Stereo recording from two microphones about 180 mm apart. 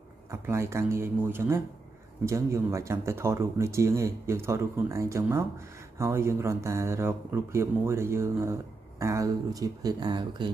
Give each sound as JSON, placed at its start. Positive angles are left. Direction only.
{"t": 0.3, "sound": "speech", "side_deg": -15}